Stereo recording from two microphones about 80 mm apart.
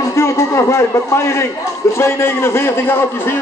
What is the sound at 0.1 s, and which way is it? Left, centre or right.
A man's voice, left.